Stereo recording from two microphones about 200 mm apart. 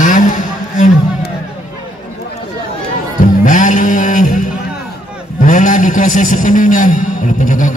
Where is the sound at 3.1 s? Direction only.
40° left (ahead or behind).